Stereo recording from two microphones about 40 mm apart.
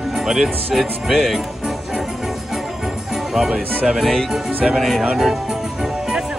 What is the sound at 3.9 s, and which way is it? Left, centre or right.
Speech, centre.